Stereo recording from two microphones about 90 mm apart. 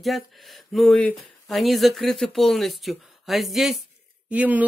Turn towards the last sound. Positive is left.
turn(degrees=-15)  # may be behind; listen again after turning